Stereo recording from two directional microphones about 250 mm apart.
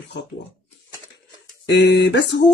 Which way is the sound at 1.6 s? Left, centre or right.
Left.